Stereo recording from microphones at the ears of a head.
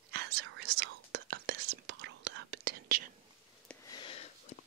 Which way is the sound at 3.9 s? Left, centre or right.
Left.